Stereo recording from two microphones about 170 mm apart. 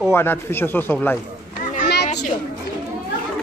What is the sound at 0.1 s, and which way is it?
Speech, 15° left (ahead or behind).